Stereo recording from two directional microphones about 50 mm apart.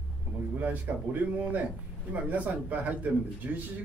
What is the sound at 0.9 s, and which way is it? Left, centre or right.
Speech, right.